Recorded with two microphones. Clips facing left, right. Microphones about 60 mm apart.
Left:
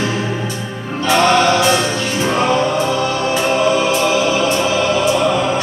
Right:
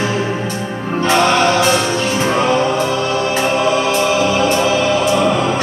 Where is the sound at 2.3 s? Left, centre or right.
Centre.